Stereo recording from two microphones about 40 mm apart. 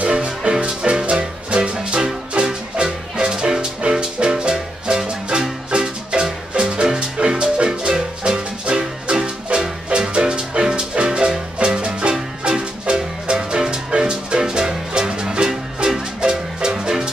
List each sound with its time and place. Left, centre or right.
0.0 s music: right
6.5 s music: right